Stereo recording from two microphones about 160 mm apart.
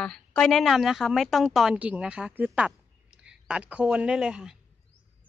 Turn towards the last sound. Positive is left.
turn(degrees=-5)  # may be behind; listen again after turning